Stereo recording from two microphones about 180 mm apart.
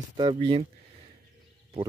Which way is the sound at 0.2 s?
30° right (ahead or behind).